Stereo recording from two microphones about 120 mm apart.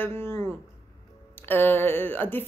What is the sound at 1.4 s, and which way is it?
A woman's voice, 15° left (ahead or behind).